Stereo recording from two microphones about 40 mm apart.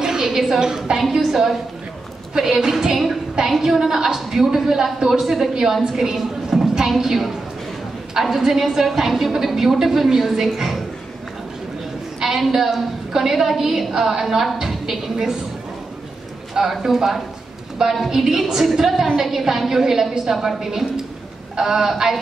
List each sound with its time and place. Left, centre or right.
0.0 s a sound: centre
0.6 s a woman's voice: centre
0.9 s a woman's voice: centre
12.2 s a woman's voice: centre
16.8 s a woman's voice: centre